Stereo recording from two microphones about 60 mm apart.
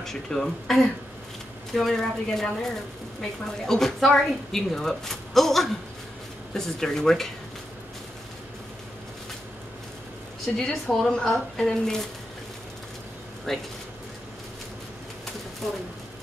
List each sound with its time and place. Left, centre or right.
0.0 s a woman's voice: centre
10.4 s speech: centre
13.5 s speech: centre